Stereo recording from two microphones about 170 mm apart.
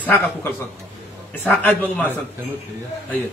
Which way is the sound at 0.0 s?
10° left (ahead or behind).